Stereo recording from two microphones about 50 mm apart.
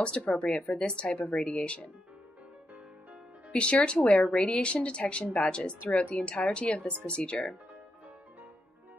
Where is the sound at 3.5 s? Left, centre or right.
Left.